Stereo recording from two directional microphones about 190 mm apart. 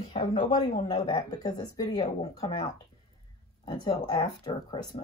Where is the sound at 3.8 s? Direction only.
20° left (ahead or behind).